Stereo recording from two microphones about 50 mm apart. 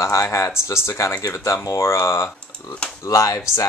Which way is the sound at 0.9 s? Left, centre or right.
Left.